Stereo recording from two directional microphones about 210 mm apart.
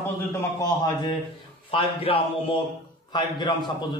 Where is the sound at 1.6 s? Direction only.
25° left (ahead or behind).